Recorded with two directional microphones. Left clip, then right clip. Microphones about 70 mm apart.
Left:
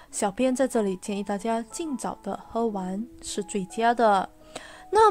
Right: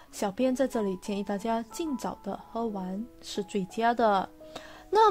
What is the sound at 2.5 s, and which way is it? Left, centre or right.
Speech, left.